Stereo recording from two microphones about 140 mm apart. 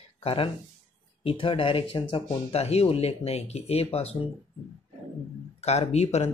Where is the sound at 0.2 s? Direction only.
45° left (ahead or behind).